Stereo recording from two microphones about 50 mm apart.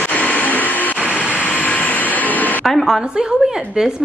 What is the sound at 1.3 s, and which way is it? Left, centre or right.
Vehicle, left.